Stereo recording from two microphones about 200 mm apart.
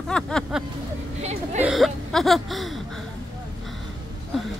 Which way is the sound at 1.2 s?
35° right (ahead or behind).